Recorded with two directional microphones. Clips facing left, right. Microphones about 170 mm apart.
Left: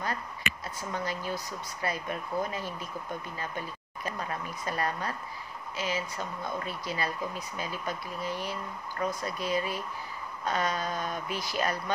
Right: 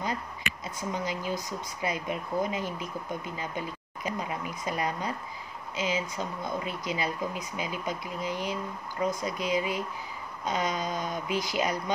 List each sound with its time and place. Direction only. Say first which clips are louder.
0.0 s speech: right 1 dB; 20° right (ahead or behind)